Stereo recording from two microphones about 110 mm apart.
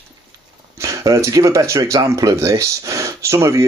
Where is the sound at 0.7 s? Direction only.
30° right (ahead or behind).